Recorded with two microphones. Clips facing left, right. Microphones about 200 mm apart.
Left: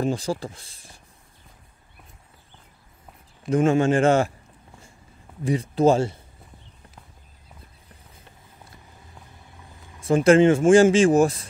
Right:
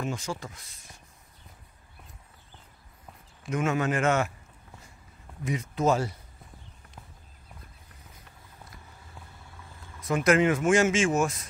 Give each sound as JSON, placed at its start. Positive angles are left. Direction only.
{"t": 0.0, "sound": "speech", "side_deg": 35}
{"t": 3.4, "sound": "speech", "side_deg": 30}
{"t": 5.4, "sound": "speech", "side_deg": 30}
{"t": 9.9, "sound": "speech", "side_deg": 30}